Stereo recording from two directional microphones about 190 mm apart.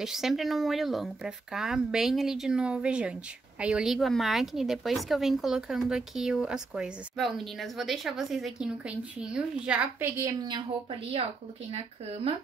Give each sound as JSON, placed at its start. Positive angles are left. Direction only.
{"t": 0.0, "sound": "speech", "side_deg": 0}